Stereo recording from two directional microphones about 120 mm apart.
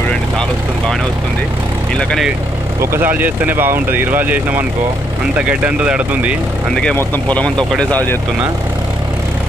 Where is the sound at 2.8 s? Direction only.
20° right (ahead or behind).